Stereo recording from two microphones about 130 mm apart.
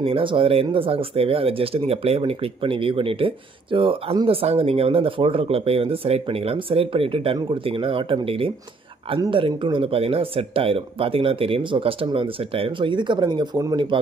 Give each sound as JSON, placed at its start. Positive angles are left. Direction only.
{"t": 0.0, "sound": "speech", "side_deg": -45}